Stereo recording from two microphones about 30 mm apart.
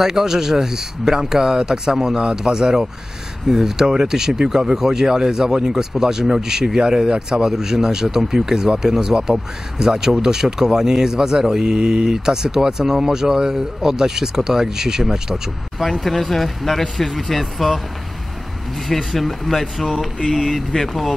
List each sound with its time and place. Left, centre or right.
0.0 s speech: centre
3.4 s speech: centre
15.8 s speech: centre
18.9 s speech: centre